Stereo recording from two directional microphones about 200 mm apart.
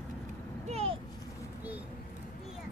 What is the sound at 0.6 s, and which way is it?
Vehicle, 30° right (ahead or behind).